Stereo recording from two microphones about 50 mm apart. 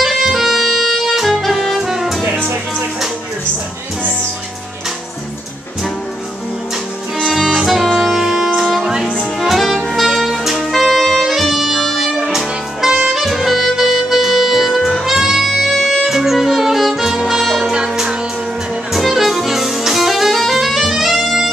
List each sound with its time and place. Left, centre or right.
0.0 s music: centre
7.2 s music: centre
9.4 s saxophone: centre
14.9 s music: centre
16.0 s saxophone: centre
18.9 s music: centre